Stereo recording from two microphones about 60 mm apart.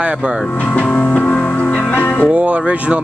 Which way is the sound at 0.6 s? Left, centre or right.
Left.